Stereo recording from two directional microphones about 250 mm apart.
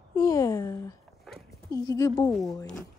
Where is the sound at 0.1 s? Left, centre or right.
Centre.